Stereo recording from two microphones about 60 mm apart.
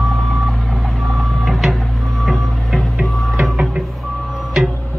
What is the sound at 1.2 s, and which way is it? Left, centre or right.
Reversing beeps, centre.